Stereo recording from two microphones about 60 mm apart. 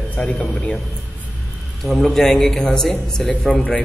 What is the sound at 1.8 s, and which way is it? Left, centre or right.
A man's voice, centre.